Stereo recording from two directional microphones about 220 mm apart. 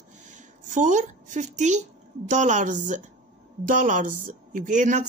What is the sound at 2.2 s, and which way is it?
A woman's voice, 35° right (ahead or behind).